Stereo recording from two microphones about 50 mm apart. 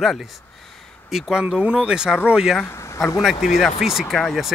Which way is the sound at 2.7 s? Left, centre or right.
Left.